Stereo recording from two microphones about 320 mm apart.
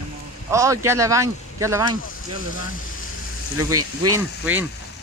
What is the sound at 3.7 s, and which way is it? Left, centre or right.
Speech, right.